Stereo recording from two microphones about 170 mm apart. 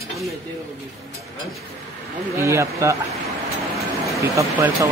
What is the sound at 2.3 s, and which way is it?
Speech, 15° right (ahead or behind).